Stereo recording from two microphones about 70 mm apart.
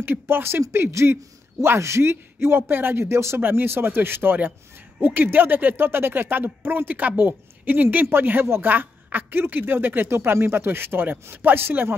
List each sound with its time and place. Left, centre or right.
0.0 s speech: right